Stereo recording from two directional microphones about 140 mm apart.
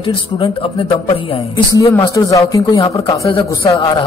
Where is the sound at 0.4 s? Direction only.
40° left (ahead or behind).